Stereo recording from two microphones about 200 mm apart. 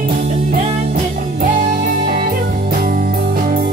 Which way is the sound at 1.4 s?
45° right (ahead or behind).